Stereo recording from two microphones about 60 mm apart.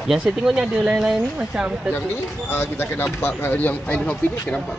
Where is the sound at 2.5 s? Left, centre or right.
Left.